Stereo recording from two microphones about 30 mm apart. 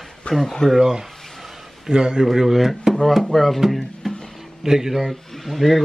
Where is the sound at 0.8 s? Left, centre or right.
Centre.